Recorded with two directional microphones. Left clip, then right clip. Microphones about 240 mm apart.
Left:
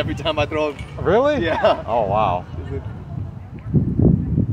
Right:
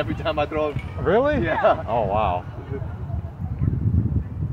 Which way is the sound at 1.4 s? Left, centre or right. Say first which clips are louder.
Left 2 dB; left.